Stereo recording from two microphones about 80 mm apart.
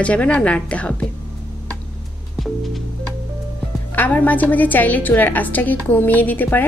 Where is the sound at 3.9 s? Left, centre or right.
Left.